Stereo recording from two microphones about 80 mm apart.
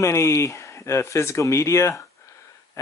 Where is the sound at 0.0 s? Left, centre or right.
Left.